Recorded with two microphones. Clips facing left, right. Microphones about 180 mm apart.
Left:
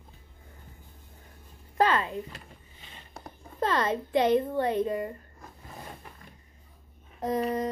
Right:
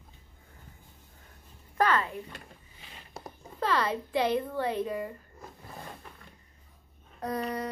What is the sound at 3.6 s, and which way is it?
A child's voice, 20° left (ahead or behind).